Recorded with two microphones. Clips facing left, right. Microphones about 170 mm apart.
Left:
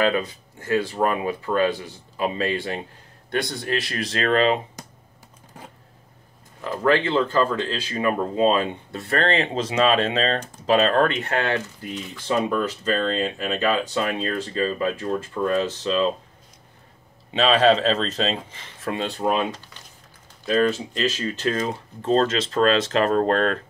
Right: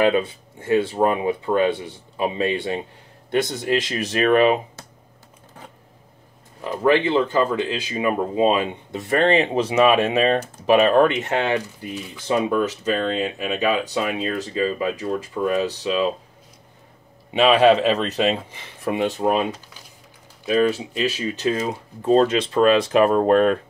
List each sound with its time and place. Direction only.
0.0 s speech: 25° right (ahead or behind)
6.6 s speech: 15° right (ahead or behind)
17.3 s speech: 10° right (ahead or behind)
20.4 s speech: 10° right (ahead or behind)